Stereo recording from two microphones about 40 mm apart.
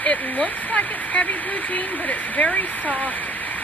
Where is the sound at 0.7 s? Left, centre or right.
Left.